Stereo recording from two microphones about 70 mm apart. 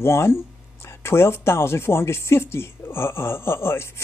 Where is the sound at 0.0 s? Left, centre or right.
Left.